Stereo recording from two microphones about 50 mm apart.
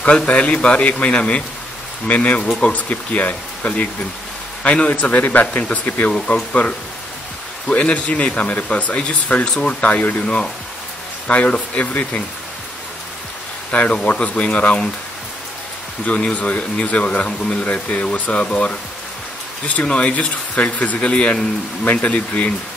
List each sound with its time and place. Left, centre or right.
0.0 s speech: left
9.8 s speech: left
13.7 s speech: left
16.1 s speech: left